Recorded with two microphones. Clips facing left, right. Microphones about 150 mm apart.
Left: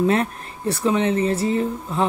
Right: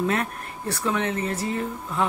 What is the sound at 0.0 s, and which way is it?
Speech, 30° left (ahead or behind).